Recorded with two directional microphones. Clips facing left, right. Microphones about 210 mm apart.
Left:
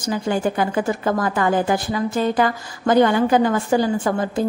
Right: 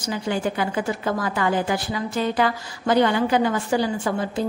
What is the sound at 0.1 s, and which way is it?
Speech, 45° left (ahead or behind).